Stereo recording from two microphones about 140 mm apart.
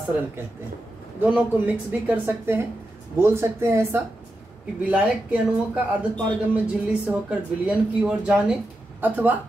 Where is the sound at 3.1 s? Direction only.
15° right (ahead or behind).